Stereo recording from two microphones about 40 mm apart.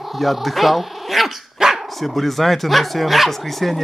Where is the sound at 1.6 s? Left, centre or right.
Centre.